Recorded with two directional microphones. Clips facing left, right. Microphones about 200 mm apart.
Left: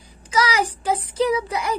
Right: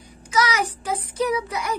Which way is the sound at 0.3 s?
30° left (ahead or behind).